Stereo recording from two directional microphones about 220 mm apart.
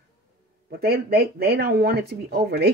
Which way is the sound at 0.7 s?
45° right (ahead or behind).